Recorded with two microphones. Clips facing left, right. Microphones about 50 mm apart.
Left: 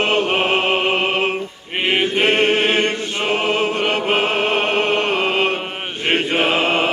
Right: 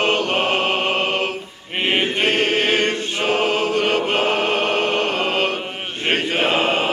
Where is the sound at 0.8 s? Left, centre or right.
Centre.